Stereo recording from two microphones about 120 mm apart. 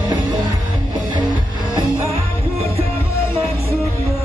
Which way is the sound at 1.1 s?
40° right (ahead or behind).